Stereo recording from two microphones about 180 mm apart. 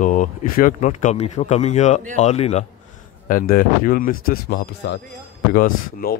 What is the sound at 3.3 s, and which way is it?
Speech, 50° left (ahead or behind).